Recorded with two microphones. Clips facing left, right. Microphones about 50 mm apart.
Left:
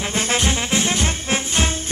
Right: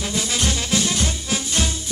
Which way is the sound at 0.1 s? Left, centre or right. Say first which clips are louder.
Left 4 dB; left.